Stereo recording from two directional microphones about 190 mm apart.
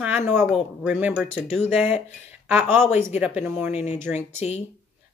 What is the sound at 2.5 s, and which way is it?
Speech, 10° right (ahead or behind).